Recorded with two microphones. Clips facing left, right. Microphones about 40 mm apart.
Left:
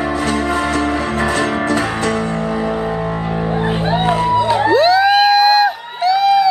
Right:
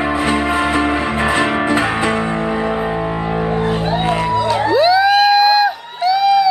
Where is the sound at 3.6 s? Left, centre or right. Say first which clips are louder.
Left 1 dB; centre.